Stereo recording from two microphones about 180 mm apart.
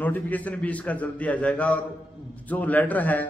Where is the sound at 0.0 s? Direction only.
10° left (ahead or behind).